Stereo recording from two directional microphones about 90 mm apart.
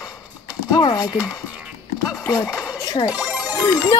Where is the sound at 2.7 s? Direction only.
45° left (ahead or behind).